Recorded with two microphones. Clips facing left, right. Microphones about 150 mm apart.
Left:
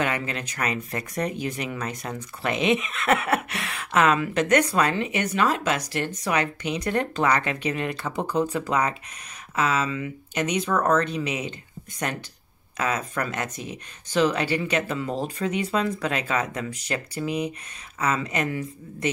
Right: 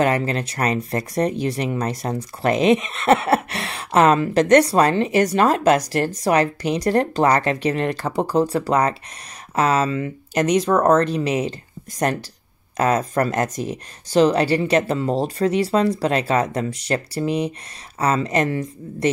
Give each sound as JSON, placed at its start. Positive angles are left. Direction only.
{"t": 0.0, "sound": "speech", "side_deg": -40}
{"t": 10.7, "sound": "speech", "side_deg": -20}
{"t": 11.1, "sound": "speech", "side_deg": -40}